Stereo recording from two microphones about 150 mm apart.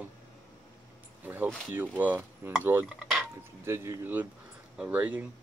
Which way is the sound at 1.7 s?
10° right (ahead or behind).